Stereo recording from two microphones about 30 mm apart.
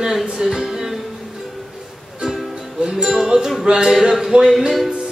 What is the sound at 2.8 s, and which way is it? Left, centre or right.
Music, centre.